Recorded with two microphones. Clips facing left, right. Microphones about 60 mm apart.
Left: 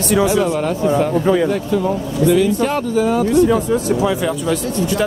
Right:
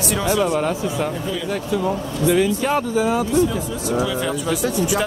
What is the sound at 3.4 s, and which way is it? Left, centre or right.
Speech, left.